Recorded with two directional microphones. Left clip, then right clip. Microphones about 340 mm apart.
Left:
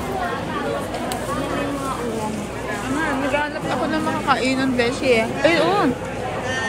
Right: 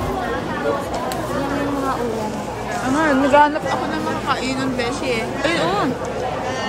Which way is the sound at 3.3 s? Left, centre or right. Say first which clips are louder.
Right 12 dB; centre.